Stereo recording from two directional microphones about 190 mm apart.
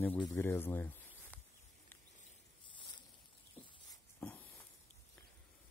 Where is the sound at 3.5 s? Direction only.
10° left (ahead or behind).